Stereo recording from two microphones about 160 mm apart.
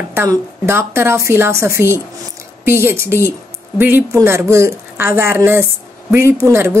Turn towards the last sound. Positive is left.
turn(degrees=-15)  # may be behind; listen again after turning